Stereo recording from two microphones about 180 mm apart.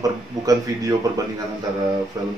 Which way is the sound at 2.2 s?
20° right (ahead or behind).